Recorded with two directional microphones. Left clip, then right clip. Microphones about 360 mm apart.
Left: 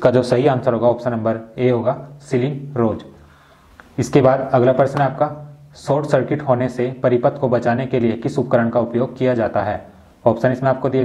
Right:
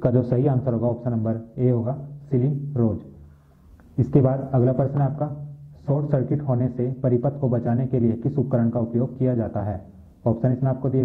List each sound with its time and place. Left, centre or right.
0.0 s speech: centre
0.7 s speech: centre